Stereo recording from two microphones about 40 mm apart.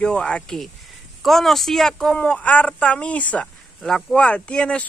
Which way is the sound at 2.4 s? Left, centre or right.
Left.